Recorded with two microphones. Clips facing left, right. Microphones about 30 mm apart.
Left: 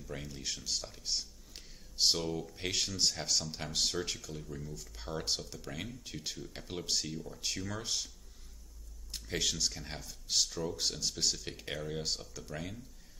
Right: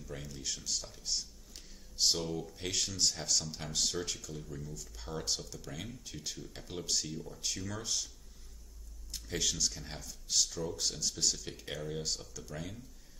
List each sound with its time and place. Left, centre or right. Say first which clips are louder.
0.0 s speech: left 1 dB; centre
0.7 s a sound: left 2 dB; centre
2.1 s speech: left 1 dB; centre
2.5 s speech: left 1 dB; centre
9.1 s speech: left 1 dB; centre